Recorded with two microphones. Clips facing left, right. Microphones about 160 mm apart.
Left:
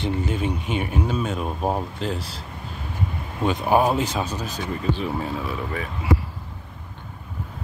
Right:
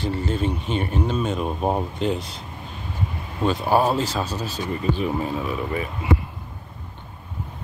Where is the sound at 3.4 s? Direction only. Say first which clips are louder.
Even; 15° left (ahead or behind).